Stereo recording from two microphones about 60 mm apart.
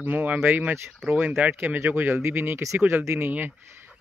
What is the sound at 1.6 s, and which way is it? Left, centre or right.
Speech, right.